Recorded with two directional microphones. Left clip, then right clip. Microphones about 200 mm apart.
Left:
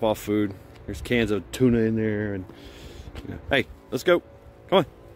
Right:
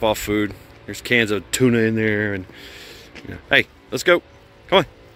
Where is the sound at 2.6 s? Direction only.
5° left (ahead or behind).